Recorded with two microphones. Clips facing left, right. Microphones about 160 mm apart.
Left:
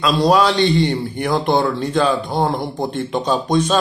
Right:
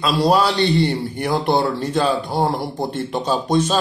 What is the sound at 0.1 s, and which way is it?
Speech, 10° right (ahead or behind).